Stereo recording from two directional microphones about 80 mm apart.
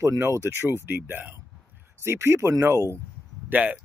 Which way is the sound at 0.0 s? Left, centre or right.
Right.